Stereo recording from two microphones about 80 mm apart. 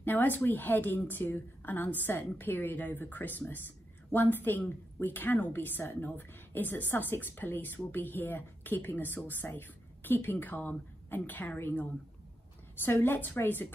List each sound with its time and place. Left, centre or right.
0.0 s a woman's voice: left